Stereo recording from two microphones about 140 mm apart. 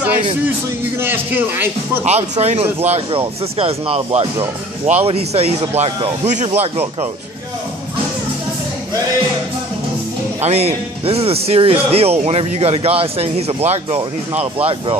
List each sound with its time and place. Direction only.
1.0 s a man's voice: 15° right (ahead or behind)
2.0 s speech: 50° right (ahead or behind)
2.9 s speech: 40° right (ahead or behind)
10.4 s speech: 50° right (ahead or behind)